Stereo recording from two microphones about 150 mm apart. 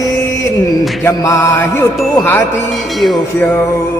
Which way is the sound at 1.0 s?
20° left (ahead or behind).